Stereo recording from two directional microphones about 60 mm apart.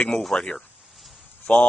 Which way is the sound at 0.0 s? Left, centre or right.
Centre.